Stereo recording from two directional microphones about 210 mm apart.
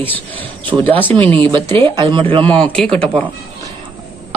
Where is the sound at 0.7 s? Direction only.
25° right (ahead or behind).